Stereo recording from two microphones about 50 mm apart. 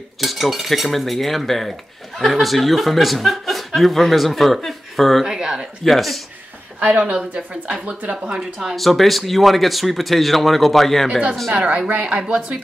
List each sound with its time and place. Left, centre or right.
0.2 s cutlery: centre
5.2 s speech: centre
5.9 s cutlery: centre
6.8 s speech: right
8.4 s speech: centre
8.7 s cutlery: centre
11.5 s speech: right